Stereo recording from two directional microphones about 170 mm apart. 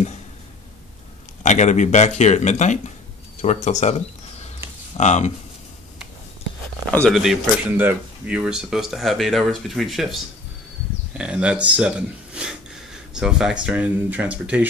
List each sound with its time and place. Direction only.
1.4 s speech: 45° left (ahead or behind)
4.9 s speech: 40° left (ahead or behind)
6.9 s speech: 10° left (ahead or behind)
7.2 s speech: 5° right (ahead or behind)
11.1 s speech: 5° right (ahead or behind)
12.4 s a sound: 5° right (ahead or behind)
13.1 s speech: 5° right (ahead or behind)